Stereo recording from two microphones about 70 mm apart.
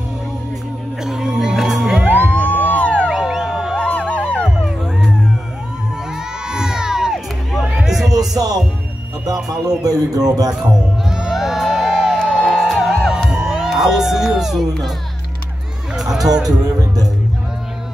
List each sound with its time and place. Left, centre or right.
1.0 s music: centre
2.3 s a sound: left
3.1 s a sound: centre
3.8 s music: centre
4.6 s music: centre
6.1 s crowd: centre
8.1 s music: right
9.8 s speech: right
10.7 s music: centre
13.3 s crowd: centre
13.7 s a child's voice: centre
15.9 s music: centre
16.4 s speech: right